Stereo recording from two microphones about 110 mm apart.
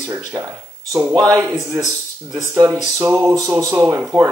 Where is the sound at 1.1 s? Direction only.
30° right (ahead or behind).